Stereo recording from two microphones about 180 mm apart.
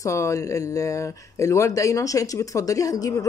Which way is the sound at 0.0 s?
15° left (ahead or behind).